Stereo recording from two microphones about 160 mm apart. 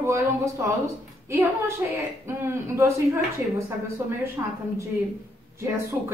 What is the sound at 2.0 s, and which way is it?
A woman's voice, 15° right (ahead or behind).